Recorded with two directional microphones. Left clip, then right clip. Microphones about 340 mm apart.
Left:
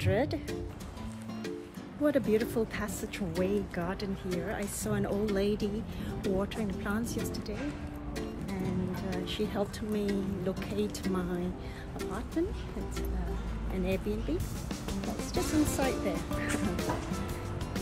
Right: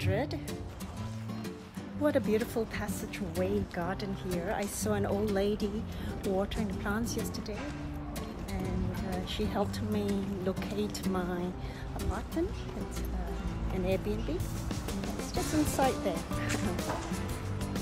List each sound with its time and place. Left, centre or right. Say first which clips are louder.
0.0 s a woman's voice: left 3 dB; centre
2.0 s a woman's voice: left 1 dB; centre
9.1 s a woman's voice: even; centre
14.7 s a woman's voice: left 1 dB; centre